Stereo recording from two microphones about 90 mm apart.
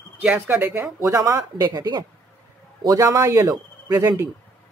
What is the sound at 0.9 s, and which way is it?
Speech, 35° right (ahead or behind).